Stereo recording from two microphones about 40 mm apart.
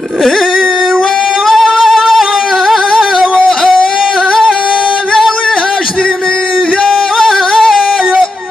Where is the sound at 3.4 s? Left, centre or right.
Centre.